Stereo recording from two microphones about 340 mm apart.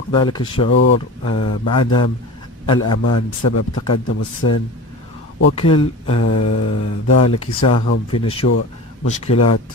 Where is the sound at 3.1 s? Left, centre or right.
Left.